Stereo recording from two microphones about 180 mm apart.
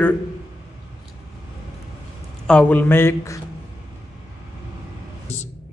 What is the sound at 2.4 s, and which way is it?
A man's voice, 5° left (ahead or behind).